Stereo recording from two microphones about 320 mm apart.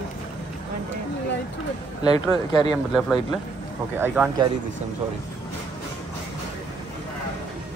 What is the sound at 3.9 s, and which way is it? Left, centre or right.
Speech, centre.